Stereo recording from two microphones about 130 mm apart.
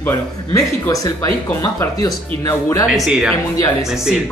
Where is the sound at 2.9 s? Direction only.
5° right (ahead or behind).